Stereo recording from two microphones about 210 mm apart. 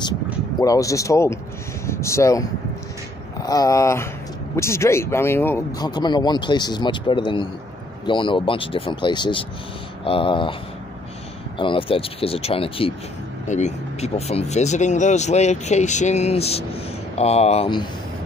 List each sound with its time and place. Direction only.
0.6 s speech: 15° left (ahead or behind)
3.4 s speech: 15° left (ahead or behind)
11.5 s speech: 25° left (ahead or behind)